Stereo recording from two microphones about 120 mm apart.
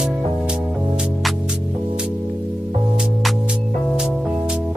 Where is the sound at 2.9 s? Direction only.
5° right (ahead or behind).